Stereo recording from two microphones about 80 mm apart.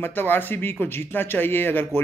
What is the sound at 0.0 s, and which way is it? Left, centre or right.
A man's voice, left.